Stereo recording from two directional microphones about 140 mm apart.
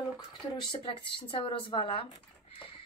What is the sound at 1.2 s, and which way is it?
Speech, 40° left (ahead or behind).